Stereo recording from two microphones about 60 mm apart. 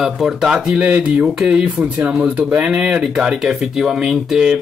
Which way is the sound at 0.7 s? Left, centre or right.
Right.